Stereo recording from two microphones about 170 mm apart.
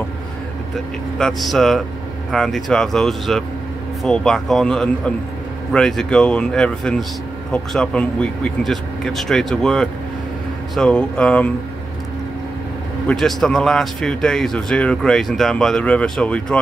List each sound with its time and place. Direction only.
1.1 s speech: centre (ahead or behind)
13.0 s speech: centre (ahead or behind)